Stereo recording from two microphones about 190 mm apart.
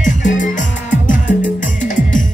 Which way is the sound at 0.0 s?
40° left (ahead or behind).